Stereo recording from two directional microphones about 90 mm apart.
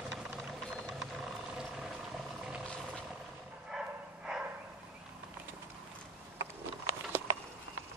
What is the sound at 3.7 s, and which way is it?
Dog, 5° right (ahead or behind).